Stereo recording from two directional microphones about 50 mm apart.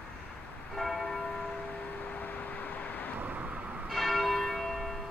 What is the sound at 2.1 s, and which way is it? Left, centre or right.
Vehicle, left.